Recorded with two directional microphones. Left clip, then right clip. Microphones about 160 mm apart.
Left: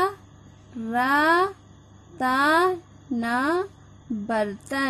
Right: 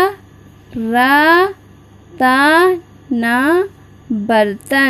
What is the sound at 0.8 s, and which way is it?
A woman's voice, 10° right (ahead or behind).